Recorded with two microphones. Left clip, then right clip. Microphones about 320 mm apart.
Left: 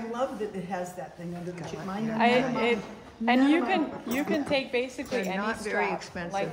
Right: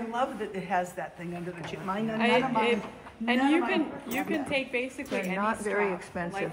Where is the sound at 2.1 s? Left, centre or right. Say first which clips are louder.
Left 2 dB; left.